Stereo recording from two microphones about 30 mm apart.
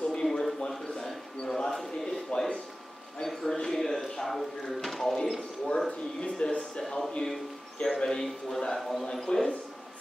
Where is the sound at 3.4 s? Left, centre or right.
Centre.